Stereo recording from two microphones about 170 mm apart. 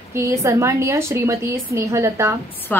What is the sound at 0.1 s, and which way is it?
A woman's voice, 15° right (ahead or behind).